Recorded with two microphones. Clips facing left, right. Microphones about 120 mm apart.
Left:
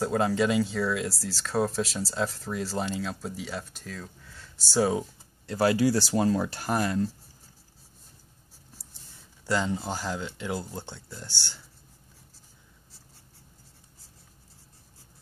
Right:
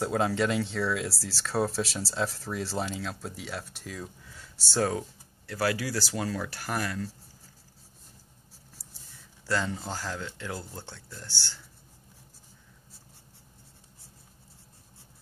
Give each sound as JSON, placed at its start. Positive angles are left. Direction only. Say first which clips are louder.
{"t": 0.0, "sound": "speech", "louder": "left 2 dB", "side_deg": 0}
{"t": 5.5, "sound": "speech", "louder": "left 6 dB", "side_deg": 25}
{"t": 9.5, "sound": "speech", "louder": "left 3 dB", "side_deg": 15}